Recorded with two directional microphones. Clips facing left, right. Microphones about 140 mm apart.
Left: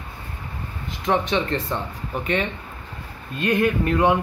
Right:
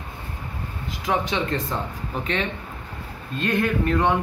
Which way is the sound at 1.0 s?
5° right (ahead or behind).